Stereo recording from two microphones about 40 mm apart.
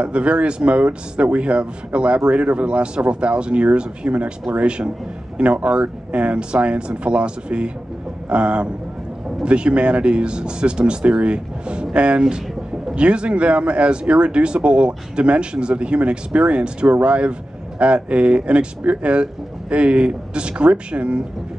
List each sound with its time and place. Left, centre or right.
0.0 s speech: right